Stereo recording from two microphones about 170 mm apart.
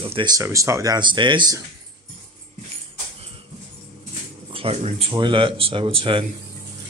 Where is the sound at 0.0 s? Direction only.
30° right (ahead or behind).